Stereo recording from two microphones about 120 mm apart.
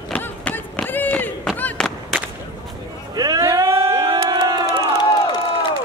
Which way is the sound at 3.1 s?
30° right (ahead or behind).